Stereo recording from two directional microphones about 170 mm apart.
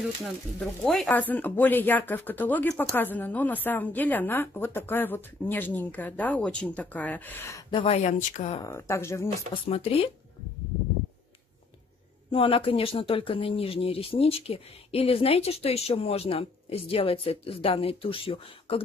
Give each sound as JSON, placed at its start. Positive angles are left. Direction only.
{"t": 0.8, "sound": "a woman's voice", "side_deg": 5}
{"t": 7.7, "sound": "speech", "side_deg": 35}
{"t": 8.6, "sound": "a woman's voice", "side_deg": 15}
{"t": 9.5, "sound": "speech", "side_deg": 35}
{"t": 12.3, "sound": "speech", "side_deg": 35}